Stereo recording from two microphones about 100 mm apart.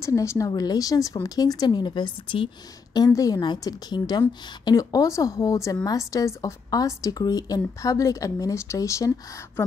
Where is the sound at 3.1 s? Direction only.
35° left (ahead or behind).